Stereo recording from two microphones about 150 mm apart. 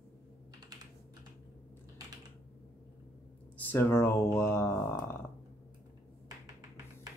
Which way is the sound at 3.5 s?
15° left (ahead or behind).